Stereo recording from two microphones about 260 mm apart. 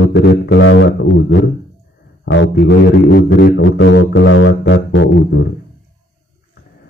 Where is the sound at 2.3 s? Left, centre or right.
Left.